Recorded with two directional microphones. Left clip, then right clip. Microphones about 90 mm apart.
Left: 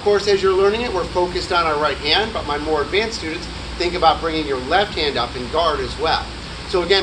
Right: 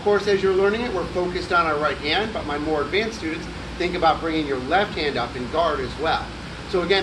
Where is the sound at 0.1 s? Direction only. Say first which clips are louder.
Left 3 dB; 25° right (ahead or behind).